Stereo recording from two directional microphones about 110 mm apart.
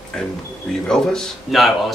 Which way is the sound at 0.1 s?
5° left (ahead or behind).